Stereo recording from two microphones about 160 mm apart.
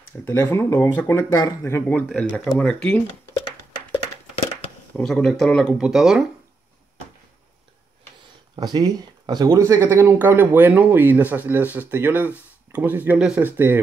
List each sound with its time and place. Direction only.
0.2 s speech: 15° left (ahead or behind)
4.9 s speech: 5° left (ahead or behind)
8.7 s speech: 25° right (ahead or behind)